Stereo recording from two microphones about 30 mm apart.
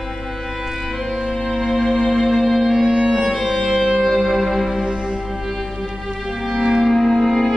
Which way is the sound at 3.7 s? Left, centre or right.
Centre.